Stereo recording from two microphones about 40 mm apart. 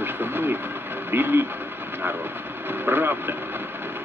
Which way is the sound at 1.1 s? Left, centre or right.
Right.